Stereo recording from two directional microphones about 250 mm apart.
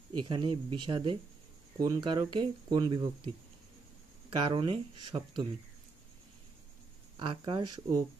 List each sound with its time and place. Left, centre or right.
0.3 s speech: centre
4.4 s speech: centre
7.2 s speech: centre